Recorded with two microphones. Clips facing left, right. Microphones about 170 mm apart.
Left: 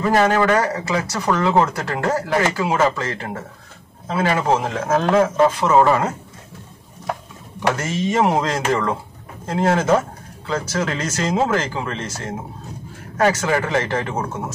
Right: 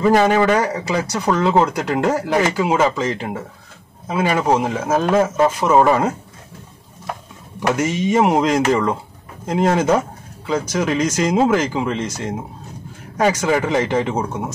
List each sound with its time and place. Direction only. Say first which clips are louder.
0.2 s speech: right 1 dB; 15° right (ahead or behind)
7.7 s speech: right 6 dB; 10° right (ahead or behind)